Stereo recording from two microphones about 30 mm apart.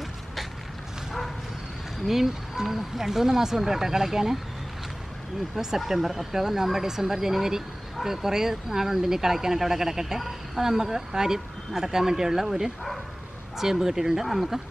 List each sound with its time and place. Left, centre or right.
2.0 s speech: centre
5.9 s speech: centre
6.4 s speech: centre
14.2 s speech: centre